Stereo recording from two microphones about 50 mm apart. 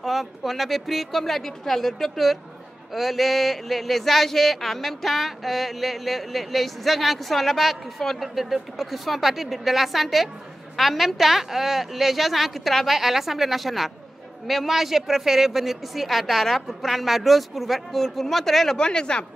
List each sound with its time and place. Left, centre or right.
0.0 s speech: centre
18.8 s a woman's voice: centre